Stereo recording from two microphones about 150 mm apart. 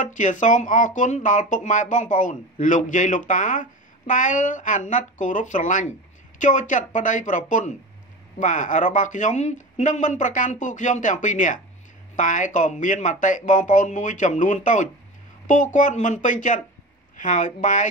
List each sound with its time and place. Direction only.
0.0 s speech: 55° left (ahead or behind)